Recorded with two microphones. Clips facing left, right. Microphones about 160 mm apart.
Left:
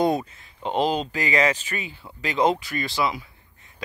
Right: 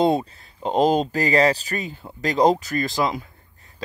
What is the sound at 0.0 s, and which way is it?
Speech, 30° right (ahead or behind).